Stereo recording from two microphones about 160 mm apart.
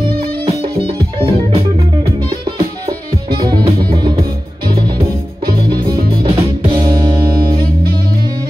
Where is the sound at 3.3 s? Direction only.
30° right (ahead or behind).